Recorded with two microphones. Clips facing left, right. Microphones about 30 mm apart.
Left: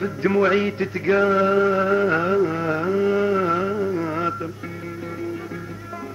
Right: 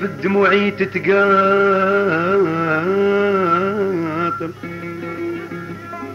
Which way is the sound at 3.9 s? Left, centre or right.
Right.